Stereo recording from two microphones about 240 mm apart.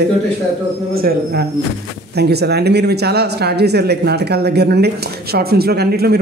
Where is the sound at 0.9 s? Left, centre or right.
Right.